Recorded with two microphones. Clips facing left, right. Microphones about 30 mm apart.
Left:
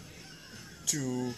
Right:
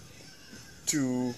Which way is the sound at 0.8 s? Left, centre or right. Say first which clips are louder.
Right 5 dB; right.